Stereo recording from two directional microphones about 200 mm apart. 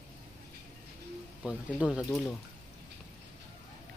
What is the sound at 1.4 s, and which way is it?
Speech, 5° right (ahead or behind).